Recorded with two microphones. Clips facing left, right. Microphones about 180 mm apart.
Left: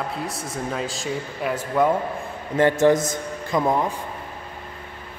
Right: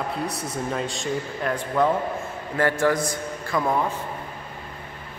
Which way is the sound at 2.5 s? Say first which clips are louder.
Left 5 dB; 20° left (ahead or behind).